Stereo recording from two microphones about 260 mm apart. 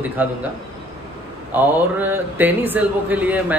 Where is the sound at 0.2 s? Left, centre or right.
Centre.